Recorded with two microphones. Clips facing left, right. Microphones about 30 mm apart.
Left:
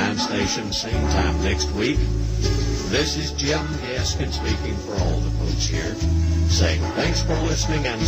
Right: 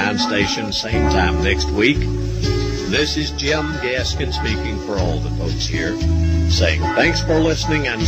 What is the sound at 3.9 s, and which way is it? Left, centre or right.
Speech, right.